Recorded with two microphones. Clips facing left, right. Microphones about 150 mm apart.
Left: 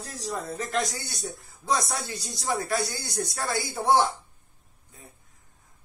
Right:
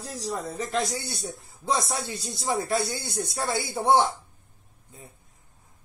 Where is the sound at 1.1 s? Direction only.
30° right (ahead or behind).